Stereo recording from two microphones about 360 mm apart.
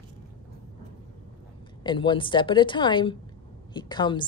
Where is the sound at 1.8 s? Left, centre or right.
Centre.